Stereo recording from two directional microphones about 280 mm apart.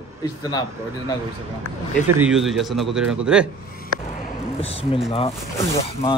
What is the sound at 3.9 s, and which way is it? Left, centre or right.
Basketball bounce, right.